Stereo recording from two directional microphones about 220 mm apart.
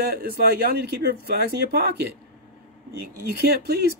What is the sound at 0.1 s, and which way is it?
Speech, 45° right (ahead or behind).